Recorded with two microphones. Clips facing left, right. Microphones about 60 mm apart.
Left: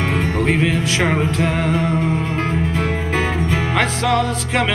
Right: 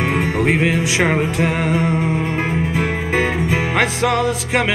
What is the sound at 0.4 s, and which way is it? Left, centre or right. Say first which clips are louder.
Music: right 1 dB; centre.